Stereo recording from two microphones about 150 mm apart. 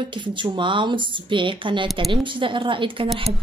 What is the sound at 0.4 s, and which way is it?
Speech, 35° right (ahead or behind).